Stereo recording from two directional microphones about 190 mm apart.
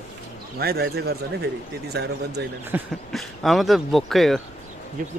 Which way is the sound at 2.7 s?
10° right (ahead or behind).